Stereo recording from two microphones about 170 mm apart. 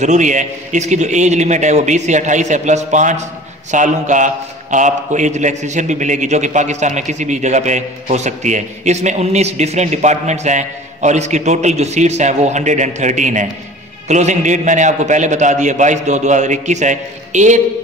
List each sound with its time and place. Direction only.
0.0 s a man's voice: 45° right (ahead or behind)